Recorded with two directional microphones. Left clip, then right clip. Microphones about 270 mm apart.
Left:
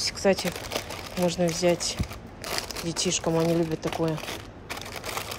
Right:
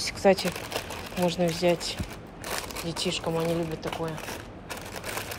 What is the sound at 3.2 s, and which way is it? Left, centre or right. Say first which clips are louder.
Speech: left 5 dB; centre.